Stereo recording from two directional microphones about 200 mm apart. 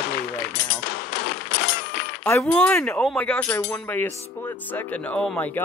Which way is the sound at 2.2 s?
10° left (ahead or behind).